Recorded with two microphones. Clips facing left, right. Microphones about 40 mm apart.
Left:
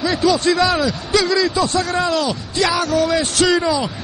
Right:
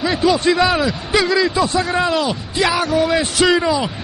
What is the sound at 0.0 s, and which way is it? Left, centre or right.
A man's voice, centre.